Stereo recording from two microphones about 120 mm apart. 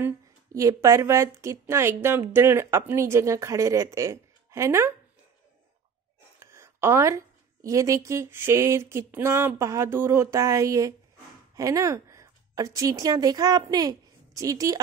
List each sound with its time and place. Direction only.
0.5 s a woman's voice: 25° right (ahead or behind)
6.4 s a woman's voice: 20° right (ahead or behind)